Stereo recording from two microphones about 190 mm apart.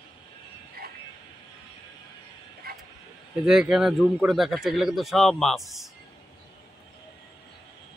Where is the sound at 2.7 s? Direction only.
55° right (ahead or behind).